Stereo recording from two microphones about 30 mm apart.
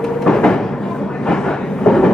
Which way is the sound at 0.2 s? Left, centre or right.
Centre.